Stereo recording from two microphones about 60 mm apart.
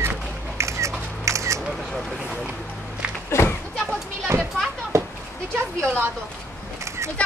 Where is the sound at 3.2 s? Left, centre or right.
Left.